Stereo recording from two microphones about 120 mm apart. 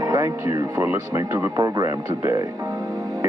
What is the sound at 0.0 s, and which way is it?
Speech, 30° right (ahead or behind).